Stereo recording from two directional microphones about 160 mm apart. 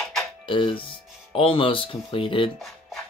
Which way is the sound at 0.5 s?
30° left (ahead or behind).